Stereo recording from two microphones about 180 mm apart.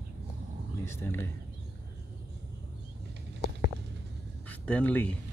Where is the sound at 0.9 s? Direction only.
15° left (ahead or behind).